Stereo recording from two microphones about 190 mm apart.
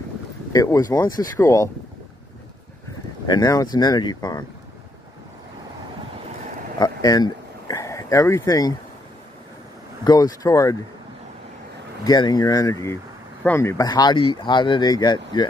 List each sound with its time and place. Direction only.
0.5 s speech: 20° left (ahead or behind)
3.3 s speech: 20° left (ahead or behind)
6.8 s a sound: 20° left (ahead or behind)
10.0 s speech: 20° left (ahead or behind)
12.0 s speech: 20° left (ahead or behind)